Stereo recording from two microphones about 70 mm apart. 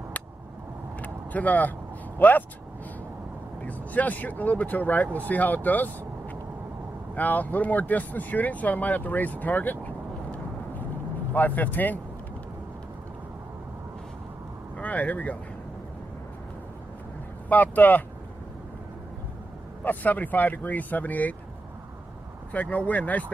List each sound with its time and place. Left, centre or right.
1.0 s vehicle: left
2.1 s speech: left
3.6 s speech: left
7.2 s speech: left
14.8 s speech: left
17.5 s speech: left
19.8 s speech: left
22.5 s speech: left